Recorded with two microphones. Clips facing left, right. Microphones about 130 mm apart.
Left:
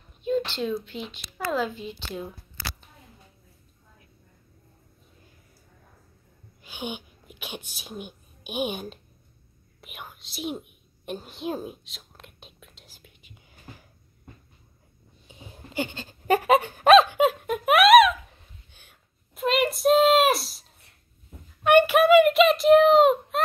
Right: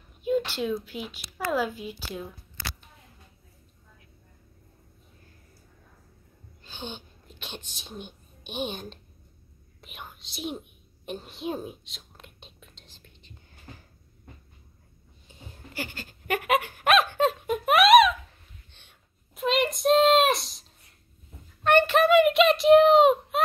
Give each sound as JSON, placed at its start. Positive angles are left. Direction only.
{"t": 0.2, "sound": "speech", "side_deg": -10}
{"t": 6.6, "sound": "speech", "side_deg": 10}
{"t": 9.8, "sound": "whispering", "side_deg": 5}
{"t": 15.2, "sound": "wail", "side_deg": 20}
{"t": 17.1, "sound": "a sound", "side_deg": 5}
{"t": 21.6, "sound": "a sound", "side_deg": 10}